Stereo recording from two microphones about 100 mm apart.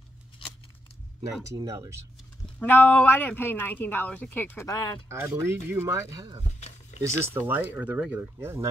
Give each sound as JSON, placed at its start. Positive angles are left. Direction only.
{"t": 1.2, "sound": "speech", "side_deg": -30}
{"t": 2.6, "sound": "speech", "side_deg": 20}
{"t": 5.0, "sound": "speech", "side_deg": -25}